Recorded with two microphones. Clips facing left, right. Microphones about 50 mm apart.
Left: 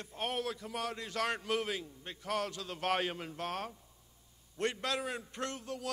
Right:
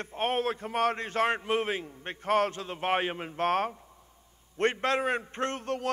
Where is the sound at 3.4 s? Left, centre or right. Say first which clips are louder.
Right 14 dB; right.